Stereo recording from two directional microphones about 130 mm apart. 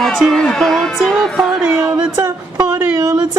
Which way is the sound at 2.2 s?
20° right (ahead or behind).